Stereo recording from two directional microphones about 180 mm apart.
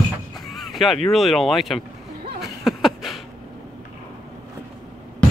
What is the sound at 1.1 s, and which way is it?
Speech, centre (ahead or behind).